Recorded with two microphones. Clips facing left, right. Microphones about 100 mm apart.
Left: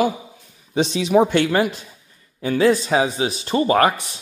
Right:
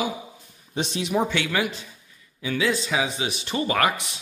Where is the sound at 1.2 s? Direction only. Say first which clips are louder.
Left 7 dB; 45° left (ahead or behind).